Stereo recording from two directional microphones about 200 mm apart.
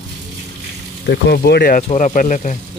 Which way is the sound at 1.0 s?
55° left (ahead or behind).